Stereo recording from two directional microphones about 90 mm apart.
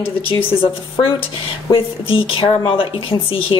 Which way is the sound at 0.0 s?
85° left.